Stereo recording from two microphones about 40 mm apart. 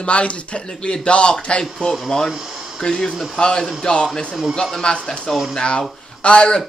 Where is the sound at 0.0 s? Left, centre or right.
Left.